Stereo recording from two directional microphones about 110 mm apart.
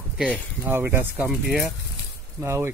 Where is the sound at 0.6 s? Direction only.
20° right (ahead or behind).